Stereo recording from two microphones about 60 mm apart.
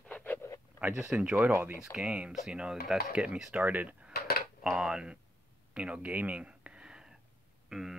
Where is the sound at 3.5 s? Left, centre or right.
Right.